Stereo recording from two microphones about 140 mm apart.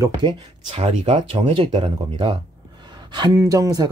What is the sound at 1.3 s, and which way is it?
Speech, 40° right (ahead or behind).